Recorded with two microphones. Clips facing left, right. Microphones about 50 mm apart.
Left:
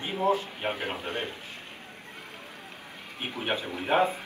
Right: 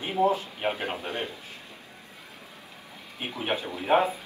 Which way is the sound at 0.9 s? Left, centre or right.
Left.